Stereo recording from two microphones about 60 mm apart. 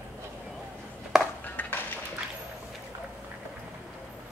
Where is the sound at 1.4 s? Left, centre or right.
Left.